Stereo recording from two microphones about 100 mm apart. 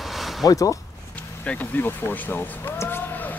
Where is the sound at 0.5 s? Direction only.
35° left (ahead or behind).